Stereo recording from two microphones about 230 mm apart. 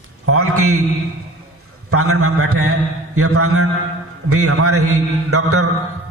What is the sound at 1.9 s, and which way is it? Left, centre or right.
A man's voice, right.